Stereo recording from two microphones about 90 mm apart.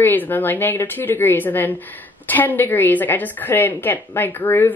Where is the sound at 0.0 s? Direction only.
20° left (ahead or behind).